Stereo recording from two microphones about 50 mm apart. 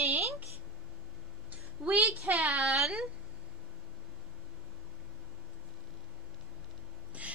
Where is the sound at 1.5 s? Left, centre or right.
Right.